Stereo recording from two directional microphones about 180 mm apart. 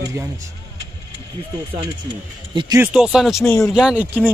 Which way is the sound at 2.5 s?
25° right (ahead or behind).